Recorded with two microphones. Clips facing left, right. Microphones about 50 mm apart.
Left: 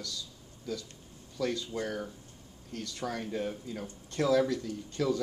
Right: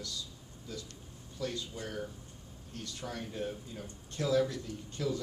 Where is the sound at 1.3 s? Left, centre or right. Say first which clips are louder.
Left 6 dB; left.